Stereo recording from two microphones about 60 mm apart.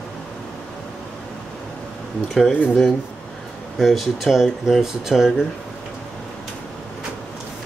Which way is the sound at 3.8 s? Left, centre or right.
Centre.